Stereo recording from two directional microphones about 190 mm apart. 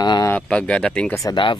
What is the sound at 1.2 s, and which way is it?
Speech, 20° left (ahead or behind).